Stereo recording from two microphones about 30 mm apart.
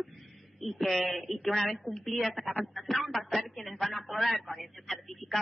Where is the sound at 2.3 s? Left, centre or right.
Left.